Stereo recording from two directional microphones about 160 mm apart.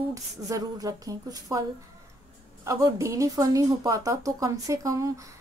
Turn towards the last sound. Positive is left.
turn(degrees=-20)  # may be behind; listen again after turning